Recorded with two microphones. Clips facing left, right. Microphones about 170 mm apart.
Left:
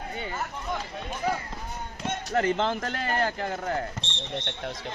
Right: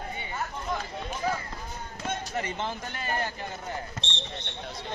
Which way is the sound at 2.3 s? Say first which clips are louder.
Left 7 dB; 75° left (ahead or behind).